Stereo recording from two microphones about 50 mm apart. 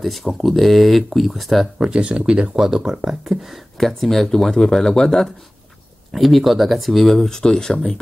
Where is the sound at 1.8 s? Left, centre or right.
Centre.